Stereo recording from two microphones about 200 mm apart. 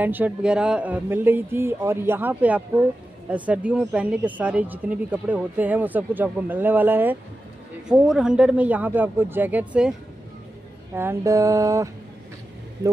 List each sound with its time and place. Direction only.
0.0 s speech: 10° right (ahead or behind)
11.0 s speech: 15° right (ahead or behind)